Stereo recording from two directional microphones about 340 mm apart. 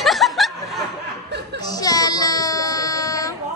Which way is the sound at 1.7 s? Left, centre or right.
Centre.